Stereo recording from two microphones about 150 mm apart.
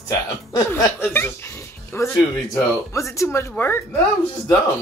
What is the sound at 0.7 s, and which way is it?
Speech, 20° left (ahead or behind).